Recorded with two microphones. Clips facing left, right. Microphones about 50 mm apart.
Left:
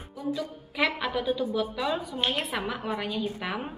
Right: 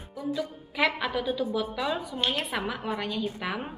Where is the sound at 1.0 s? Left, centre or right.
Centre.